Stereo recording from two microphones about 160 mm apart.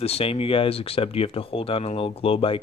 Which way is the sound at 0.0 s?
40° left (ahead or behind).